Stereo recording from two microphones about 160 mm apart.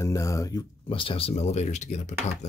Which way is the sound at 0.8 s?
35° left (ahead or behind).